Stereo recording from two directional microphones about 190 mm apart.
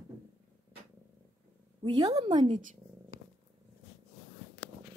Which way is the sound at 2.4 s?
40° right (ahead or behind).